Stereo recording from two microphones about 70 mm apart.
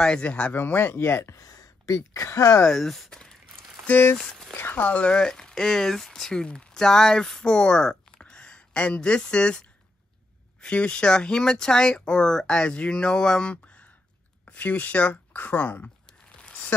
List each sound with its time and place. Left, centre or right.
0.0 s speech: centre
0.6 s speech: left
1.4 s a sound: left
2.0 s speech: left
2.6 s speech: centre
3.1 s a sound: centre
3.8 s speech: left
4.2 s speech: centre
4.6 s speech: left
16.3 s a sound: centre